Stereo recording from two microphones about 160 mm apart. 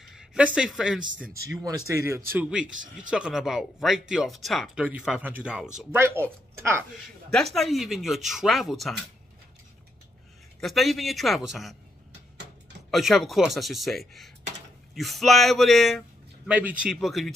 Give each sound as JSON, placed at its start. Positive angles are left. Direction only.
{"t": 0.0, "sound": "speech", "side_deg": 0}
{"t": 1.3, "sound": "speech", "side_deg": -20}
{"t": 2.6, "sound": "speech", "side_deg": -55}
{"t": 3.1, "sound": "speech", "side_deg": -5}
{"t": 5.9, "sound": "speech", "side_deg": -15}
{"t": 7.5, "sound": "speech", "side_deg": 0}
{"t": 10.6, "sound": "speech", "side_deg": 0}
{"t": 12.9, "sound": "speech", "side_deg": 0}